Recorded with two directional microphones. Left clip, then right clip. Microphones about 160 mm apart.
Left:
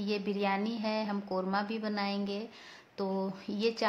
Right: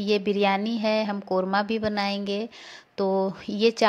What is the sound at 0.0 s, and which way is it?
A woman's voice, 45° right (ahead or behind).